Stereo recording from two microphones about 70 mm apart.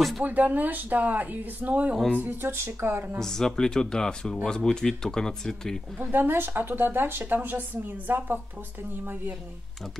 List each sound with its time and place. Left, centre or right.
0.2 s speech: right
3.2 s speech: centre
5.9 s speech: right